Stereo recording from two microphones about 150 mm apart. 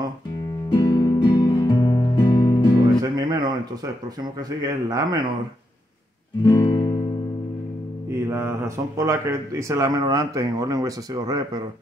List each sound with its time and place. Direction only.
0.7 s music: 25° left (ahead or behind)
3.0 s music: 25° right (ahead or behind)
4.2 s speech: 25° right (ahead or behind)
6.4 s guitar: 20° left (ahead or behind)
8.1 s speech: 15° right (ahead or behind)